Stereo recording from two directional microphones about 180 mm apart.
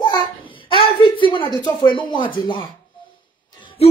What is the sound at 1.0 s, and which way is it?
Speech, 30° left (ahead or behind).